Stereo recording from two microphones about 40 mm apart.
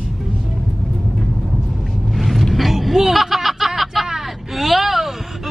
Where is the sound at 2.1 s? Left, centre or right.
Centre.